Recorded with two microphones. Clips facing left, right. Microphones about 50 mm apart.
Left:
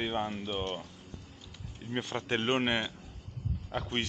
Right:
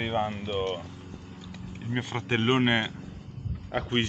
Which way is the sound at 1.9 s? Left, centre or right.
Right.